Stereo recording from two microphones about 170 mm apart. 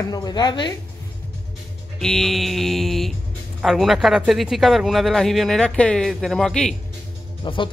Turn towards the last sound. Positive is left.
turn(degrees=30)  # may be behind; listen again after turning